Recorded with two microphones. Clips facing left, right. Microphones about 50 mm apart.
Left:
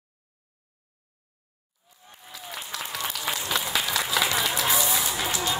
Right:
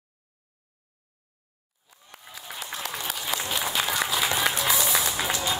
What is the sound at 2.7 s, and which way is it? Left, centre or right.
Applause, left.